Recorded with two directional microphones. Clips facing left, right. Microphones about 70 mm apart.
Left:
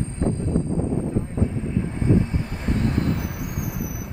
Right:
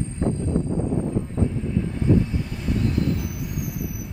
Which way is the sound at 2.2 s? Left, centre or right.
Left.